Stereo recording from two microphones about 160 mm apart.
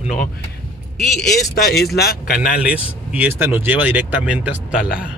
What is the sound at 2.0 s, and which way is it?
Speech, 70° left (ahead or behind).